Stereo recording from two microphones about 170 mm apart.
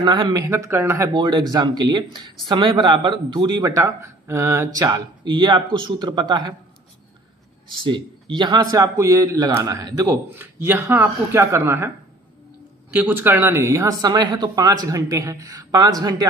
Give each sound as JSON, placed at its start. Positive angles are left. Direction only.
{"t": 0.0, "sound": "speech", "side_deg": -25}
{"t": 7.8, "sound": "speech", "side_deg": -30}
{"t": 12.9, "sound": "speech", "side_deg": -10}